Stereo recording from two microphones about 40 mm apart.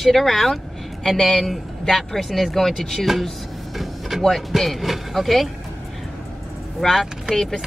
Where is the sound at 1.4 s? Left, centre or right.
Centre.